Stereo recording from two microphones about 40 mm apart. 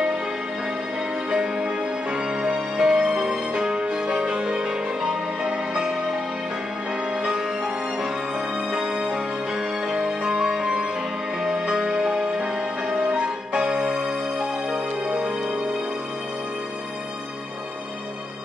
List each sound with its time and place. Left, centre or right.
1.3 s music: right
4.3 s music: centre
7.3 s music: centre
10.0 s music: right
11.9 s music: centre
12.9 s music: right
15.0 s music: right